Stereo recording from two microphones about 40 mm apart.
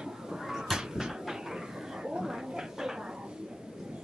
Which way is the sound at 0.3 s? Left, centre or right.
Centre.